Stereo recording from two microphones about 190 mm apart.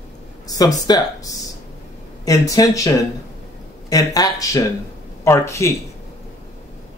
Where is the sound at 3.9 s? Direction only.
20° left (ahead or behind).